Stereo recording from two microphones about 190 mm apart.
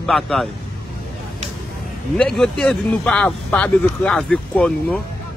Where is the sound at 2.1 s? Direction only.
5° left (ahead or behind).